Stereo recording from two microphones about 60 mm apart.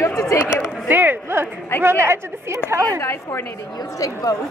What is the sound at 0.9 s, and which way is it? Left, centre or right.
A woman's voice, right.